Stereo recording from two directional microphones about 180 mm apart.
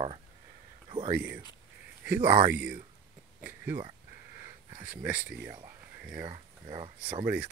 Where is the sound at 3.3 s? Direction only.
10° right (ahead or behind).